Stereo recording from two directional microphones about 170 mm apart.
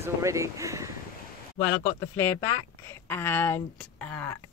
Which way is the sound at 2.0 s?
15° left (ahead or behind).